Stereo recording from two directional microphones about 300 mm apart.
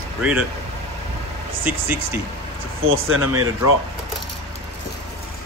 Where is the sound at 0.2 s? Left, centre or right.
Centre.